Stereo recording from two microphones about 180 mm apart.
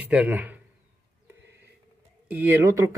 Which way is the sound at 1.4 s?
70° right (ahead or behind).